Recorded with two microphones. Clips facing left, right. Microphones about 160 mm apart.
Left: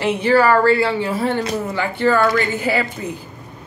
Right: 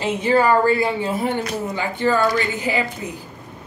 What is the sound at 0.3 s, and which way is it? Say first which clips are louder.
A woman's voice: left 2 dB; 20° right (ahead or behind).